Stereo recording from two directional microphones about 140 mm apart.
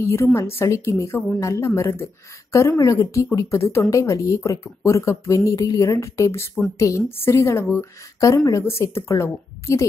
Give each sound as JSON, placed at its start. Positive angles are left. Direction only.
{"t": 0.0, "sound": "a woman's voice", "side_deg": 20}